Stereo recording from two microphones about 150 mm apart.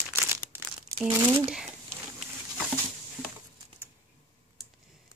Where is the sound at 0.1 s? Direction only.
15° right (ahead or behind).